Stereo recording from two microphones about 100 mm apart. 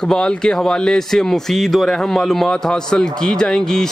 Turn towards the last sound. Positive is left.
turn(degrees=5)  # may be behind; listen again after turning